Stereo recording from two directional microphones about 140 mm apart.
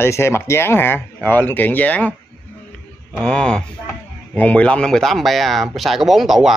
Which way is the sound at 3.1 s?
5° left (ahead or behind).